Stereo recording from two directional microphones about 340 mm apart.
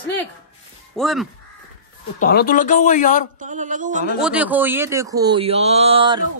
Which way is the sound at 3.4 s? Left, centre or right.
Right.